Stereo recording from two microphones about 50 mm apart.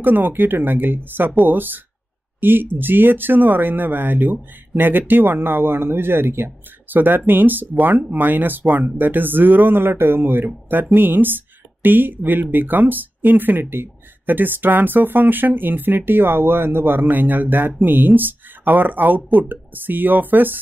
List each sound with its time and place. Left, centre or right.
0.0 s speech: right